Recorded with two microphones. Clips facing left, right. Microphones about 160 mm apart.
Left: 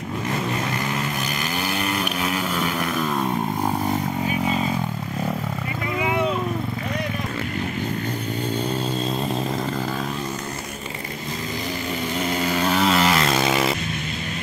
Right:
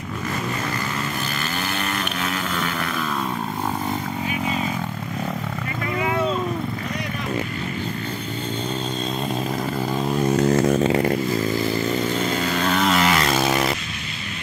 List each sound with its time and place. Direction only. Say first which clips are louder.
10.3 s chainsaw: right 14 dB; 90° right
12.4 s vehicle: left 2 dB; 10° left (ahead or behind)